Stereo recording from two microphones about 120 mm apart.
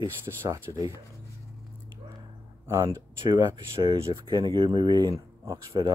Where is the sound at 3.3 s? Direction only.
40° right (ahead or behind).